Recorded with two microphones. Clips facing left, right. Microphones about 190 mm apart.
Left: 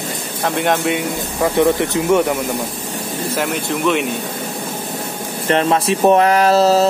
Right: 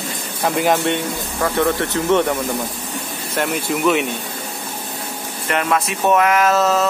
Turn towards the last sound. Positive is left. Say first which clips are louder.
# left 4 dB
turn(degrees=35)  # may be behind; listen again after turning